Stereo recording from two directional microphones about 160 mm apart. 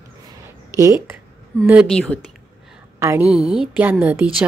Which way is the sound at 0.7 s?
20° right (ahead or behind).